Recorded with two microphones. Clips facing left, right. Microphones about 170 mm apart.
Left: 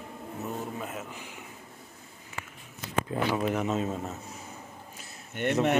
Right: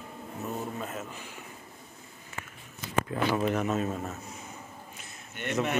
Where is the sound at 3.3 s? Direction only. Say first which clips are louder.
Even; 10° left (ahead or behind).